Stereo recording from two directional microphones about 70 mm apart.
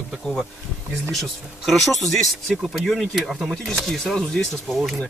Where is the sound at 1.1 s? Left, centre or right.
Centre.